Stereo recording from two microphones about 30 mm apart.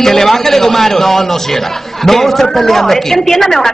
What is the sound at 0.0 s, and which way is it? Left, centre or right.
A woman's voice, centre.